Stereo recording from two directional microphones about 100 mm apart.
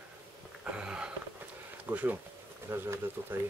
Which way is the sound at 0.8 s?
10° right (ahead or behind).